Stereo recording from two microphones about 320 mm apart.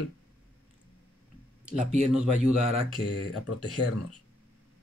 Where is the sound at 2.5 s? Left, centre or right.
Centre.